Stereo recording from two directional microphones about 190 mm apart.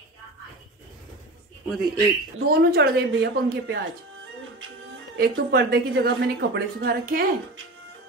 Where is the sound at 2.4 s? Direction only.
55° right (ahead or behind).